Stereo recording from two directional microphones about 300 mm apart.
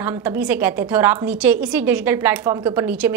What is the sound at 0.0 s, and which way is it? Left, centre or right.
A woman's voice, centre.